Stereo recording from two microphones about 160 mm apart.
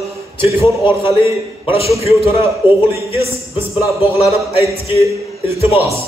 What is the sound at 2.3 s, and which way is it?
Speech, 15° right (ahead or behind).